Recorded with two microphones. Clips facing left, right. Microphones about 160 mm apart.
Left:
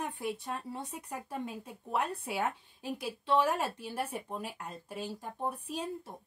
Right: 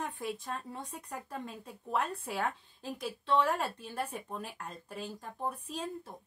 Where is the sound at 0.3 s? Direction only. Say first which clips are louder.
Left 1 dB; centre (ahead or behind).